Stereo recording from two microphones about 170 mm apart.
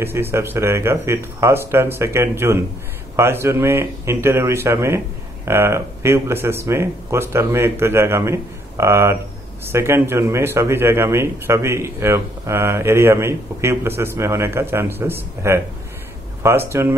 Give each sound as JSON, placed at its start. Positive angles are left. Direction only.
{"t": 0.0, "sound": "speech", "side_deg": -15}